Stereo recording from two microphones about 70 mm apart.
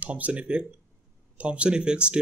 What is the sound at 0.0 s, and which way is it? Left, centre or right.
A man's voice, centre.